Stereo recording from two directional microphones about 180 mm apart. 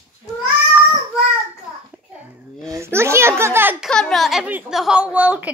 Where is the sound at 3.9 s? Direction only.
5° left (ahead or behind).